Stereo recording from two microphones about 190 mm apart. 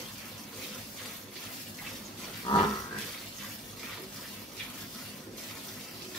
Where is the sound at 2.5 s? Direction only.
25° left (ahead or behind).